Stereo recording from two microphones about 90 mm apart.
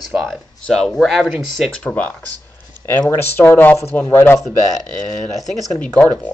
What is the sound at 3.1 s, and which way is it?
Speech, 25° left (ahead or behind).